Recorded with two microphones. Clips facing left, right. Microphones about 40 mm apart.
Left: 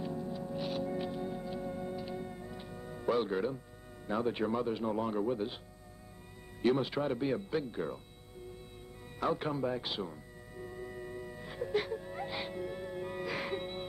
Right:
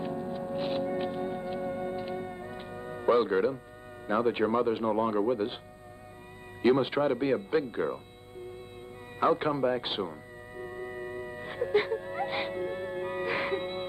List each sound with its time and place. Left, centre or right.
0.0 s music: right
4.1 s speech: right
6.6 s speech: right
9.2 s music: right